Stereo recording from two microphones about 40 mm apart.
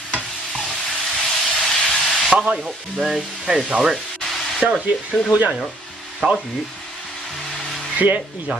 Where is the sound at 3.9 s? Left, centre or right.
Centre.